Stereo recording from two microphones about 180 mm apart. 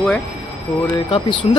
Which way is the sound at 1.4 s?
35° left (ahead or behind).